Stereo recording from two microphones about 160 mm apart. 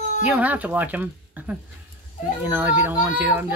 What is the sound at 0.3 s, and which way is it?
A child's voice, 10° right (ahead or behind).